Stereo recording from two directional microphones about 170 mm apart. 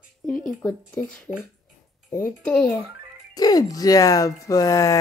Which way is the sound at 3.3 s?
20° left (ahead or behind).